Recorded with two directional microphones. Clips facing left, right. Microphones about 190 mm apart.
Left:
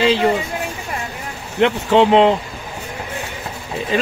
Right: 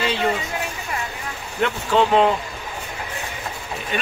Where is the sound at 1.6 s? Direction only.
20° left (ahead or behind).